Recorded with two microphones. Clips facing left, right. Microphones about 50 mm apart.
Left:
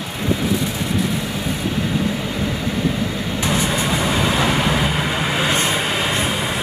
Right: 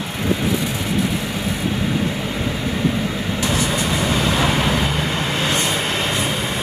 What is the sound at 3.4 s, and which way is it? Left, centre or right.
Vehicle, left.